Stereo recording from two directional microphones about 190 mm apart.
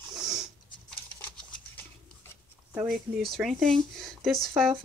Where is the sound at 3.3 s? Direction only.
Centre (ahead or behind).